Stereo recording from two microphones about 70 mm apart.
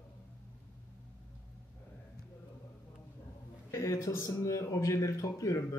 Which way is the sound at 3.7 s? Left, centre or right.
Left.